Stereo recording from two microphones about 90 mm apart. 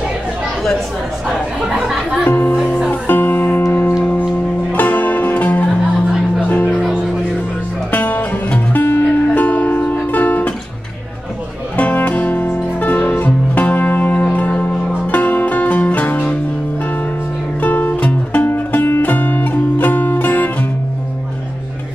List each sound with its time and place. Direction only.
1.3 s speech: 5° right (ahead or behind)
2.2 s speech: 20° left (ahead or behind)
2.9 s music: 20° left (ahead or behind)
7.9 s music: 20° left (ahead or behind)
11.7 s music: 15° left (ahead or behind)
17.6 s music: 15° left (ahead or behind)